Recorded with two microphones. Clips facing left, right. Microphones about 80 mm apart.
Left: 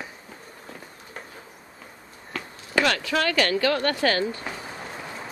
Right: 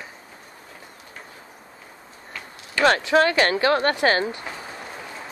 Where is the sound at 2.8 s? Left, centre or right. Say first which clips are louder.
Right 5 dB; right.